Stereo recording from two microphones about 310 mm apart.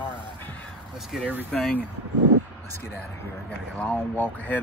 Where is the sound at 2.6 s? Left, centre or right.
Centre.